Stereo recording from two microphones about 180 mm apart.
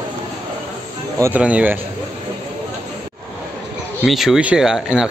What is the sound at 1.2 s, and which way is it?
Speech, 10° right (ahead or behind).